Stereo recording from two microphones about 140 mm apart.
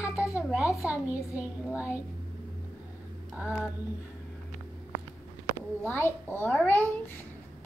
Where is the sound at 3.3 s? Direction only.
10° right (ahead or behind).